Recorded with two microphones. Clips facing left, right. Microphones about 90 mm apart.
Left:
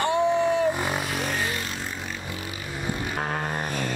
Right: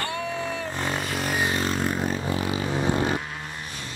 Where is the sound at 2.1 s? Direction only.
35° right (ahead or behind).